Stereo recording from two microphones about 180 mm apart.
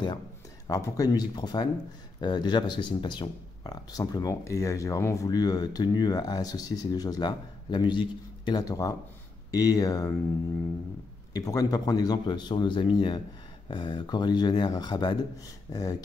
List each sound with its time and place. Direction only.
0.7 s speech: 20° left (ahead or behind)
11.3 s speech: 20° left (ahead or behind)